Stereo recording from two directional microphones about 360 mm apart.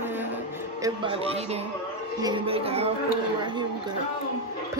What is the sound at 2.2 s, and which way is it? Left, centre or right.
A woman's voice, centre.